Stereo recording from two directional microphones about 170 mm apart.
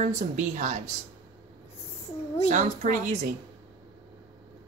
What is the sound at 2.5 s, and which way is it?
Speech, 45° right (ahead or behind).